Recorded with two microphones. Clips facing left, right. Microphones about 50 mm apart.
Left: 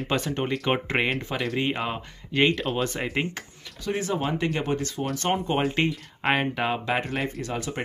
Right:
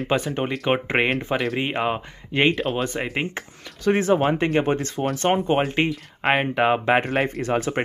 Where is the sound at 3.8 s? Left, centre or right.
Right.